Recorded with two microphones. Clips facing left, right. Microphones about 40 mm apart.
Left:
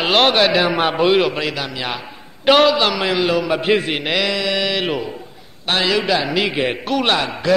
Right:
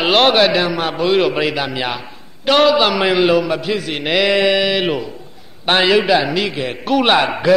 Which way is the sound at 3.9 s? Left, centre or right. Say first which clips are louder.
Right 3 dB; centre.